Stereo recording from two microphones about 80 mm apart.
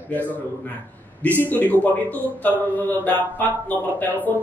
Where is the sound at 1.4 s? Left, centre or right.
Left.